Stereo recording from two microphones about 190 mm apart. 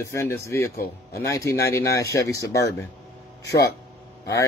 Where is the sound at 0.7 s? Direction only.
55° left (ahead or behind).